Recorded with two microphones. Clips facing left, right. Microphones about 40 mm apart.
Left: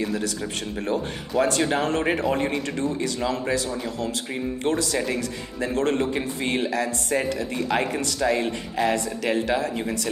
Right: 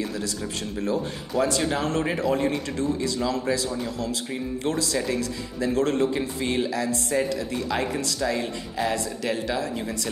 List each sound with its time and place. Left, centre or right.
0.7 s speech: left
1.3 s speech: centre
1.7 s speech: left
4.9 s speech: left